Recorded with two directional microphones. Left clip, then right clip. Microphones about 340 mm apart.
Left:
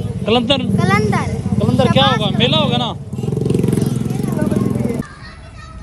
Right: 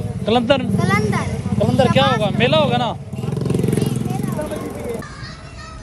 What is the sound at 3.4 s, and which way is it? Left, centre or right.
Vehicle, centre.